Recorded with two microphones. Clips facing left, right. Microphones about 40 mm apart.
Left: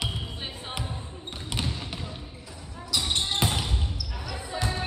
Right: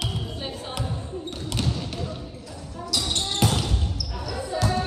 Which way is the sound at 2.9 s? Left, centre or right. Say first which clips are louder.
Even; left.